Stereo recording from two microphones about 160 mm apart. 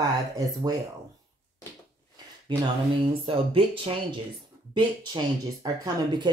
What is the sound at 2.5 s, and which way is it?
Speech, 30° right (ahead or behind).